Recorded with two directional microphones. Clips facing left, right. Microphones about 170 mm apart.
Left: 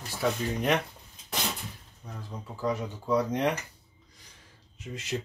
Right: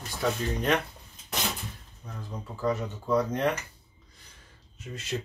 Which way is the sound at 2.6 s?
10° left (ahead or behind).